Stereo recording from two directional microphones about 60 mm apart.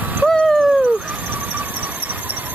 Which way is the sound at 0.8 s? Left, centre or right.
Right.